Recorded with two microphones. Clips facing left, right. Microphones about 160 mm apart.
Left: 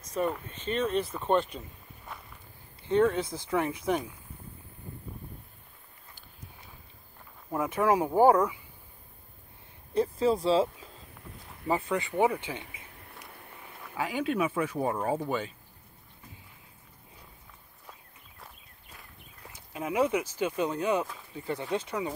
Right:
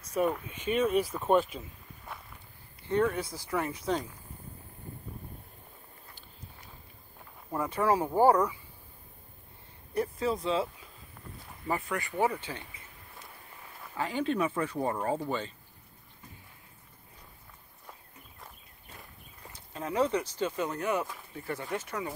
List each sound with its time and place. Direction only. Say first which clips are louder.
0.1 s speech: right 1 dB; 10° right (ahead or behind)
2.9 s speech: left 3 dB; 20° left (ahead or behind)
7.7 s speech: left 2 dB; 15° left (ahead or behind)
9.9 s speech: left 5 dB; 30° left (ahead or behind)
11.6 s speech: left 4 dB; 20° left (ahead or behind)
13.9 s speech: left 1 dB; 10° left (ahead or behind)
19.7 s speech: left 1 dB; 10° left (ahead or behind)